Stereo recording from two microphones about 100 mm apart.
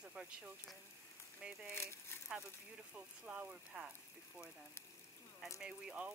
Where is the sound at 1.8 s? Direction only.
25° left (ahead or behind).